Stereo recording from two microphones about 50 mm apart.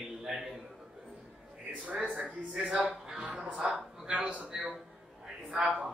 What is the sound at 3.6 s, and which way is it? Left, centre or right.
A man's voice, right.